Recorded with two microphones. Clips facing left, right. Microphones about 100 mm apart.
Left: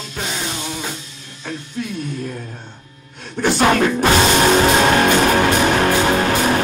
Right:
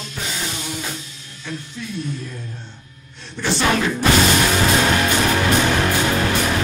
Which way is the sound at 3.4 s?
50° left (ahead or behind).